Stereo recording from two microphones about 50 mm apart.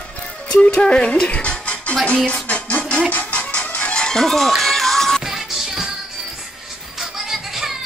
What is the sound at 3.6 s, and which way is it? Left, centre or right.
Chicken, left.